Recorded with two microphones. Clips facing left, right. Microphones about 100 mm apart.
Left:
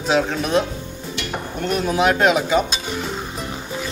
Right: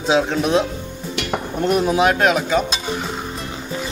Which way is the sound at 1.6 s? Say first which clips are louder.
Right 2 dB; 15° right (ahead or behind).